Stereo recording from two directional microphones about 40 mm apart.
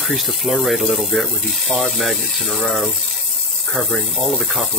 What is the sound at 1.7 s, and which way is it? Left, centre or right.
Speech, centre.